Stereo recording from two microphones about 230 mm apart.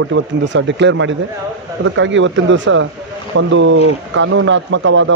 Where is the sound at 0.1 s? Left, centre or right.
Right.